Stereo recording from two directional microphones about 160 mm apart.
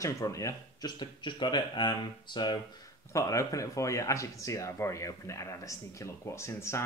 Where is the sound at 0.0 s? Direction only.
20° left (ahead or behind).